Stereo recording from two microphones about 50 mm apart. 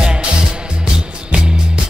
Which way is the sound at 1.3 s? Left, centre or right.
Centre.